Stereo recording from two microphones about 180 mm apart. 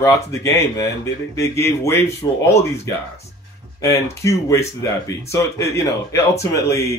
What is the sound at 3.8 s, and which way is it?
Speech, 15° left (ahead or behind).